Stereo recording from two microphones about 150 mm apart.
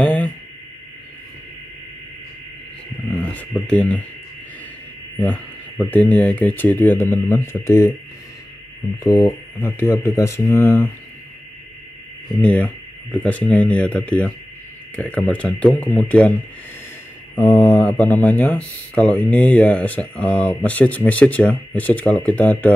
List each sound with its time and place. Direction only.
0.0 s a sound: 10° left (ahead or behind)
3.1 s a sound: 5° left (ahead or behind)
3.6 s speech: 10° left (ahead or behind)
5.1 s speech: 10° left (ahead or behind)
9.0 s speech: 25° left (ahead or behind)
12.4 s speech: 5° left (ahead or behind)
17.4 s speech: 15° left (ahead or behind)